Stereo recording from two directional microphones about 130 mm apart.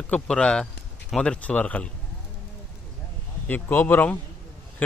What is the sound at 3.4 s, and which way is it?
Speech, 15° left (ahead or behind).